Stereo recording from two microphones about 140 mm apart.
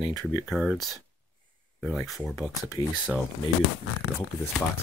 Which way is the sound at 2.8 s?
30° left (ahead or behind).